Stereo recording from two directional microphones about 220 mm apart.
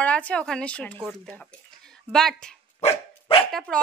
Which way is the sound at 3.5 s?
Centre (ahead or behind).